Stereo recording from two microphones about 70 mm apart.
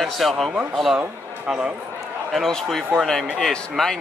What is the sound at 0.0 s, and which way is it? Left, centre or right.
Speech, centre.